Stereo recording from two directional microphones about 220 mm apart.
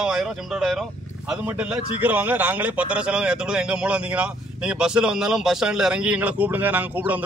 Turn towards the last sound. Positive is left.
turn(degrees=-5)  # may be behind; listen again after turning